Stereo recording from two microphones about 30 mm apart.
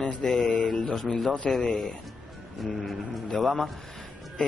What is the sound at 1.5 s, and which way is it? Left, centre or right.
Speech, left.